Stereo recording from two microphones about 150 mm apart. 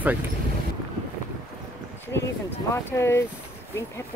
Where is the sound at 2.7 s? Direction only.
20° left (ahead or behind).